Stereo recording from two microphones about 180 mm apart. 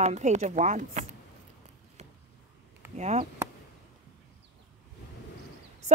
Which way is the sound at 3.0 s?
40° right (ahead or behind).